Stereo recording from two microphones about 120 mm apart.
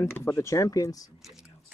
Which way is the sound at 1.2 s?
5° right (ahead or behind).